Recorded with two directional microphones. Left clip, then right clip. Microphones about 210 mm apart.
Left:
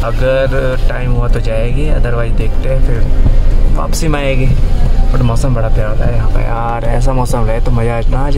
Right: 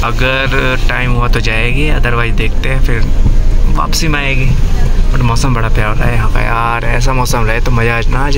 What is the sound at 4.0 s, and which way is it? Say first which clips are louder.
Speech: left 2 dB; 20° left (ahead or behind).